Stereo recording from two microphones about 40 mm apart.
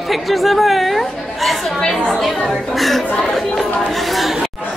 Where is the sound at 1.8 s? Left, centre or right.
Left.